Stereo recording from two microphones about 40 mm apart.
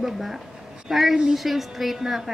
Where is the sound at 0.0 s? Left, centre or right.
Centre.